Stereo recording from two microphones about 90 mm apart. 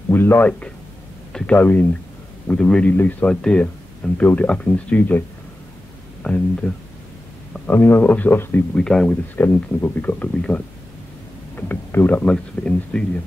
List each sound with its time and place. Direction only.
0.1 s a sound: 25° left (ahead or behind)
0.5 s speech: 15° left (ahead or behind)
6.2 s speech: 10° left (ahead or behind)
8.7 s speech: 10° left (ahead or behind)
9.4 s speech: 25° left (ahead or behind)